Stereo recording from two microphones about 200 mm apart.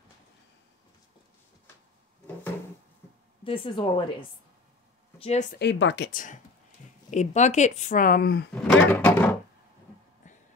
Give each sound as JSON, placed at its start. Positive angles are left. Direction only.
{"t": 3.4, "sound": "speech", "side_deg": 25}
{"t": 5.2, "sound": "speech", "side_deg": 35}
{"t": 5.6, "sound": "speech", "side_deg": 65}
{"t": 6.1, "sound": "speech", "side_deg": 40}
{"t": 8.6, "sound": "a sound", "side_deg": 10}